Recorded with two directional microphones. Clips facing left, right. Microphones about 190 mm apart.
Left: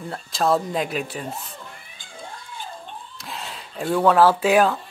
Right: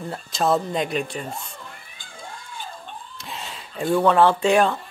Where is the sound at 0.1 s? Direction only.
Centre (ahead or behind).